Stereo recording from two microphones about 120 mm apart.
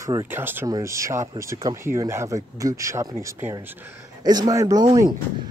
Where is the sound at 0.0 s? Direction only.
25° right (ahead or behind).